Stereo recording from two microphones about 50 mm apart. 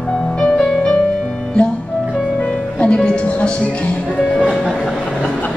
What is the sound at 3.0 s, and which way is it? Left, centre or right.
Music, left.